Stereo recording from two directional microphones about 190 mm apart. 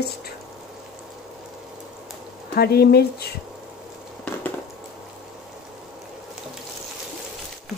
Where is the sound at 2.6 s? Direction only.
55° left (ahead or behind).